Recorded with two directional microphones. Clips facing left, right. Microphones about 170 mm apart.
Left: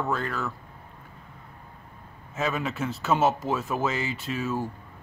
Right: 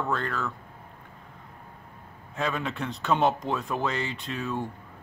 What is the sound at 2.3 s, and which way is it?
Speech, 5° left (ahead or behind).